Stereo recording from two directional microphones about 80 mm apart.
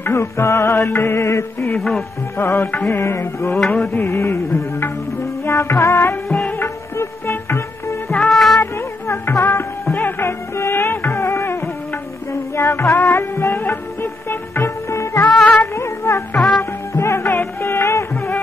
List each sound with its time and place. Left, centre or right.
0.0 s music: left
1.8 s music: centre
2.3 s music: left
3.5 s music: centre
3.9 s music: left
6.2 s music: centre
6.6 s music: left
8.2 s music: centre
8.5 s music: left
15.7 s a sound: left
16.3 s music: centre
16.9 s music: left